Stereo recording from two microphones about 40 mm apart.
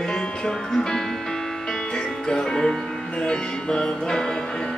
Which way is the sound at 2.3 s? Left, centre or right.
Centre.